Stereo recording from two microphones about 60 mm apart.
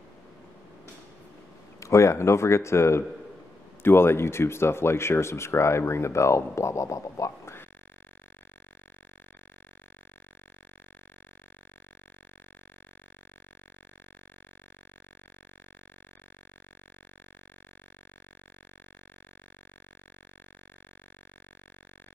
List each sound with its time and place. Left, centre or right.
1.8 s speech: left